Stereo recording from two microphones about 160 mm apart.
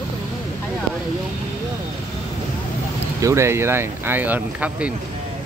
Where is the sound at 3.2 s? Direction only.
15° right (ahead or behind).